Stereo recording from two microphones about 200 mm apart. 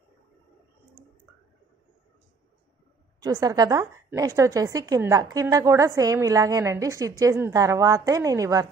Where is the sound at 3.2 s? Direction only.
20° right (ahead or behind).